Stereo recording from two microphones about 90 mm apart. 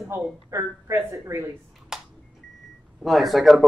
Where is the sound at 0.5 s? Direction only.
30° right (ahead or behind).